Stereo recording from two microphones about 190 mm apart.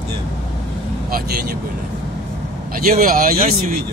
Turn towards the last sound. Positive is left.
turn(degrees=-50)  # may be behind; listen again after turning